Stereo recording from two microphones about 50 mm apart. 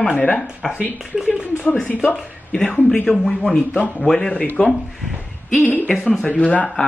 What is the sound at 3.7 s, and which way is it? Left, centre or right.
Speech, left.